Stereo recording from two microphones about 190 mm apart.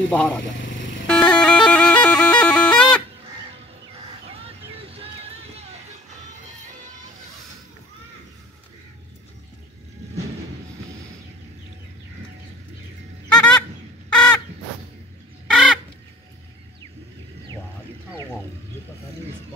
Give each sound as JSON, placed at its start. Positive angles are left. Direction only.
{"t": 0.1, "sound": "speech", "side_deg": 0}
{"t": 1.0, "sound": "bagpipes", "side_deg": 5}
{"t": 4.3, "sound": "vehicle", "side_deg": -30}
{"t": 13.3, "sound": "honk", "side_deg": 5}
{"t": 14.1, "sound": "crow", "side_deg": 5}
{"t": 15.5, "sound": "chicken", "side_deg": 0}